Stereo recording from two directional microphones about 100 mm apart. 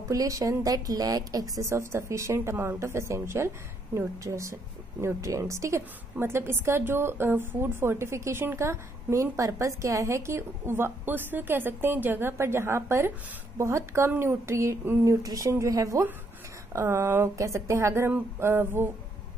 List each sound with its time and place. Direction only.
0.1 s a woman's voice: 35° right (ahead or behind)